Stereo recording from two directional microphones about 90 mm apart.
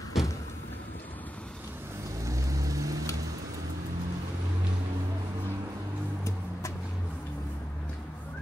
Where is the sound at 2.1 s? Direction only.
35° right (ahead or behind).